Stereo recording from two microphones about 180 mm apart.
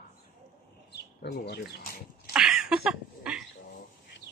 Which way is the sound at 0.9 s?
65° left (ahead or behind).